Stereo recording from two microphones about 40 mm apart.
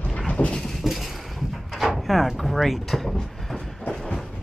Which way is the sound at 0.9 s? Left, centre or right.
Centre.